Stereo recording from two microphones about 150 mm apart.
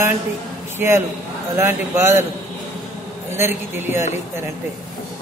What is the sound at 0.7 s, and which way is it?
Speech, 15° right (ahead or behind).